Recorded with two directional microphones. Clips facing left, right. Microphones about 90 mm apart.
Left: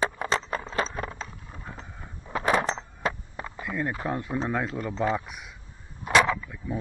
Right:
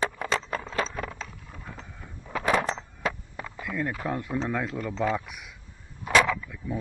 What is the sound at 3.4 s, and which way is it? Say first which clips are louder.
Speech: left 1 dB; 20° left (ahead or behind).